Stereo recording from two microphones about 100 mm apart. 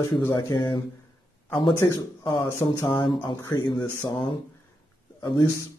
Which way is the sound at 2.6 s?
30° left (ahead or behind).